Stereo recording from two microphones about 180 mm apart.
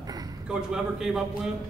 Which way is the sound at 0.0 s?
20° right (ahead or behind).